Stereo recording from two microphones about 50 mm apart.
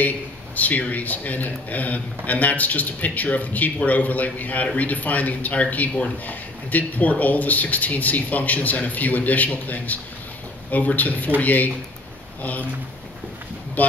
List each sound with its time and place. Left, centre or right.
0.6 s a man's voice: left
13.8 s speech: left